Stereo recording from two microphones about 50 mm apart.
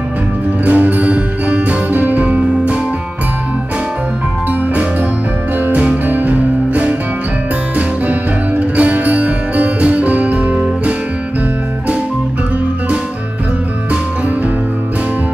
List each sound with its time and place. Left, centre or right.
0.7 s music: right
5.7 s music: right
8.1 s music: right